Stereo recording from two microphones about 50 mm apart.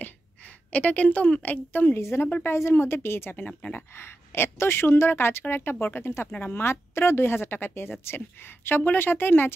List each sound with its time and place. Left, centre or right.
0.7 s a woman's voice: left
2.0 s a woman's voice: left